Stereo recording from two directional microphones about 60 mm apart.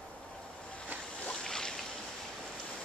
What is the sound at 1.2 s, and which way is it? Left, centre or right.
Boat, centre.